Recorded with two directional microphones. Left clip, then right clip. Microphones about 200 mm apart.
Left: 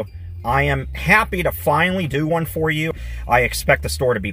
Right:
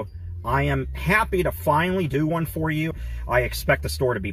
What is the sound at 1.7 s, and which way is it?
Speech, 5° left (ahead or behind).